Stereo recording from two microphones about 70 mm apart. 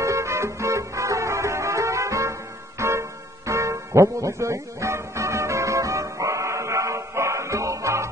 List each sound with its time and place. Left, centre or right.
0.0 s music: right